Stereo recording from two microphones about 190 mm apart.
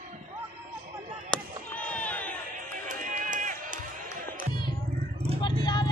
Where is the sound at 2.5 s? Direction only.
45° right (ahead or behind).